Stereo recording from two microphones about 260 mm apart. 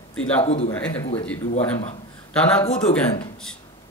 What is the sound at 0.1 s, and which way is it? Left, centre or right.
Speech, centre.